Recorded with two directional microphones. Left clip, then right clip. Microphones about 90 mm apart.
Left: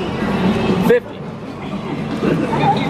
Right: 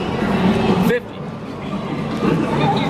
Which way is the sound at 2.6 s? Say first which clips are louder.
Left 5 dB; 35° left (ahead or behind).